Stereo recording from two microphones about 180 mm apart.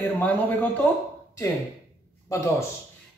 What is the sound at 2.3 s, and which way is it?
Speech, 15° left (ahead or behind).